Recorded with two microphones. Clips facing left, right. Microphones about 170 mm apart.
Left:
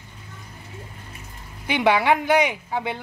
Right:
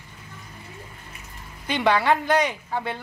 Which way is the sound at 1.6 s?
10° left (ahead or behind).